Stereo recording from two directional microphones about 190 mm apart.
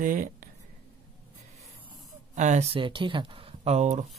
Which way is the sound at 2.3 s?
40° right (ahead or behind).